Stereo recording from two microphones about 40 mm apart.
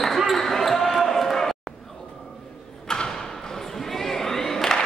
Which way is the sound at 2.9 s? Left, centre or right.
Centre.